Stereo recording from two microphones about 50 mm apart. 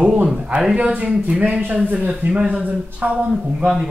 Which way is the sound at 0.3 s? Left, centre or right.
Centre.